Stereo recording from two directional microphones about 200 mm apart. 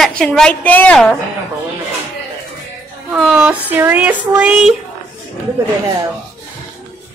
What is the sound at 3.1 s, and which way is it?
Speech, 5° right (ahead or behind).